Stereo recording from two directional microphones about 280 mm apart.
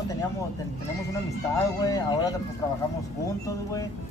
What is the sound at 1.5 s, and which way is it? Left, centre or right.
Speech, centre.